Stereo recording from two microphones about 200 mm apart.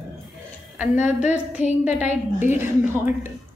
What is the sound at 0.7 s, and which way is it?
Speech, 5° right (ahead or behind).